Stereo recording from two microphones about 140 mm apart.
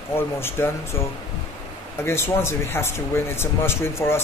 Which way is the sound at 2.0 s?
15° left (ahead or behind).